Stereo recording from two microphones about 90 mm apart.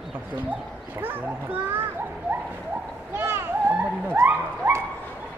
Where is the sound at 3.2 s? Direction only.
25° right (ahead or behind).